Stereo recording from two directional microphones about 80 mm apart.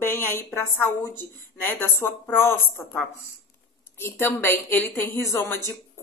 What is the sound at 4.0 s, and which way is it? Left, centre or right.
Speech, left.